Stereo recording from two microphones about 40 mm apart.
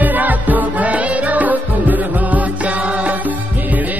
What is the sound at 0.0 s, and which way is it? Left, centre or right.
Music, right.